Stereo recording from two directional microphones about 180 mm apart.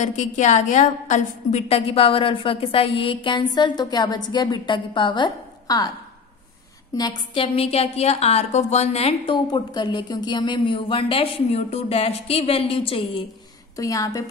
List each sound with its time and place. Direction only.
0.0 s a woman's voice: 40° left (ahead or behind); by 5.9 s 25° left (ahead or behind)
7.0 s a woman's voice: 25° left (ahead or behind)
13.7 s a woman's voice: 20° left (ahead or behind)